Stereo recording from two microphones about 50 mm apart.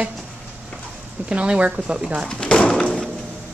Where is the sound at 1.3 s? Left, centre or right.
Right.